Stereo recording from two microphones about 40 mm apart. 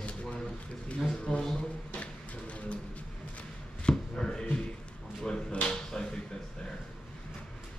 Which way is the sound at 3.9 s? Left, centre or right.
Centre.